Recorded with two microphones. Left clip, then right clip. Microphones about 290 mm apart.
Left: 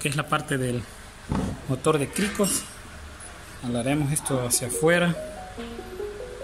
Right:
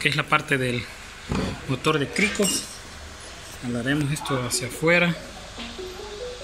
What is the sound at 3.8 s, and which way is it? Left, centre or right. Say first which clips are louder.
Speech: right 2 dB; centre.